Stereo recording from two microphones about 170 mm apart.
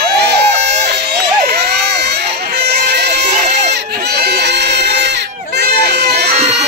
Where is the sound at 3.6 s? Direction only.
80° right.